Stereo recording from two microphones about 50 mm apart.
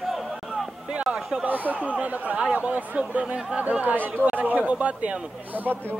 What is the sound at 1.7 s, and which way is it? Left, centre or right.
Speech, right.